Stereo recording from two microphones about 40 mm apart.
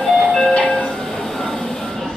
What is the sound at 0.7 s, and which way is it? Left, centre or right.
Train, centre.